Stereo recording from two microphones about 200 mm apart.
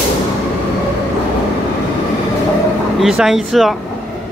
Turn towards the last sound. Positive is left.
turn(degrees=0)  # may be behind; listen again after turning